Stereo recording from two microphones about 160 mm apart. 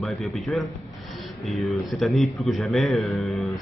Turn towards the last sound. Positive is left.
turn(degrees=0)  # may be behind; listen again after turning